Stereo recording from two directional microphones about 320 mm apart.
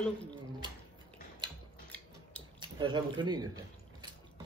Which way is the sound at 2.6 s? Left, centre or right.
Centre.